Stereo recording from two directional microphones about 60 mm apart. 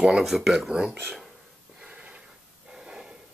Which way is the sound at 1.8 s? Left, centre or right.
Centre.